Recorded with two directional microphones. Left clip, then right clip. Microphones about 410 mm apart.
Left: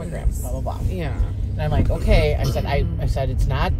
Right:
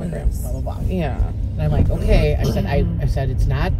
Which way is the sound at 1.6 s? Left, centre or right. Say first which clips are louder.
Even; centre.